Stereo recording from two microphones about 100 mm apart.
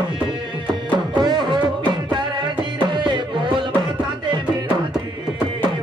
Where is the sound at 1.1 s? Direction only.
50° right (ahead or behind).